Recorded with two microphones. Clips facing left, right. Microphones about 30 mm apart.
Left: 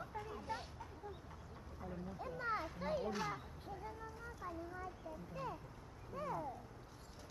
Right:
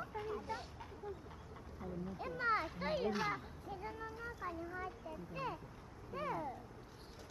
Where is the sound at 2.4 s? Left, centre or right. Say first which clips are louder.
Right 5 dB; right.